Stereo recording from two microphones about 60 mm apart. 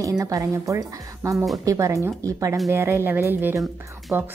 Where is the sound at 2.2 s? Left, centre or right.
Right.